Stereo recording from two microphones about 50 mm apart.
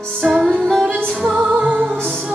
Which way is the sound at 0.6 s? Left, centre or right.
Centre.